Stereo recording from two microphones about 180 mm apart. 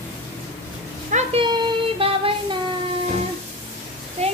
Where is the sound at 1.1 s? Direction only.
35° right (ahead or behind).